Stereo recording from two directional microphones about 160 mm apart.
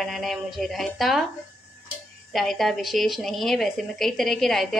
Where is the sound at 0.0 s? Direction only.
Centre (ahead or behind).